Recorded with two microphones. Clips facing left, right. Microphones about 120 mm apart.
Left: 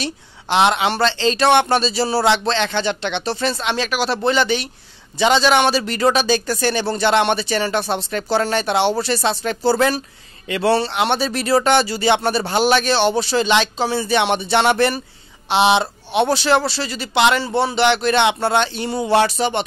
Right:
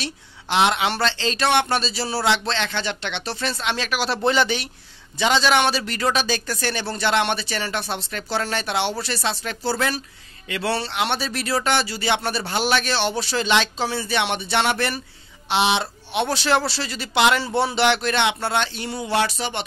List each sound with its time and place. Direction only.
0.5 s speech: 30° left (ahead or behind)
4.2 s speech: 10° right (ahead or behind)
5.2 s speech: 25° left (ahead or behind)
13.3 s speech: 20° left (ahead or behind)
16.6 s speech: centre (ahead or behind)
18.1 s speech: 25° left (ahead or behind)